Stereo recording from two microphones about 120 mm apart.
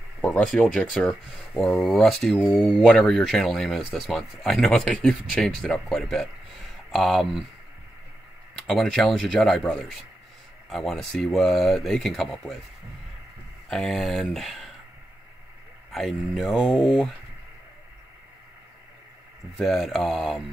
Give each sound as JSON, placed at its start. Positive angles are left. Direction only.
{"t": 0.2, "sound": "speech", "side_deg": 5}
{"t": 8.5, "sound": "speech", "side_deg": 5}
{"t": 13.7, "sound": "speech", "side_deg": 5}
{"t": 15.9, "sound": "speech", "side_deg": 0}
{"t": 19.5, "sound": "speech", "side_deg": 0}